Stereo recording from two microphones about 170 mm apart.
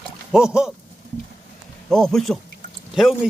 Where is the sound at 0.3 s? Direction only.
5° right (ahead or behind).